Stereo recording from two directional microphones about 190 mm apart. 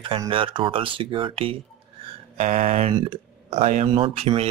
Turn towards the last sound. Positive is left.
turn(degrees=-30)  # may be behind; listen again after turning